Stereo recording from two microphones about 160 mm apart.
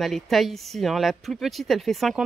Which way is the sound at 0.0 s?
Centre (ahead or behind).